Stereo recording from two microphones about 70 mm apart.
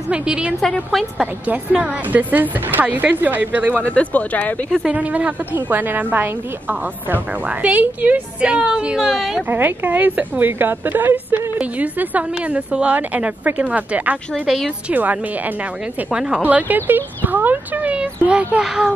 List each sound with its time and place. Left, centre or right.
0.1 s a woman's voice: centre
1.5 s a woman's voice: right
3.8 s speech: centre
4.8 s a woman's voice: right; by 9.4 s centre
9.5 s a woman's voice: right
16.1 s speech: centre
16.4 s a woman's voice: right
17.9 s speech: centre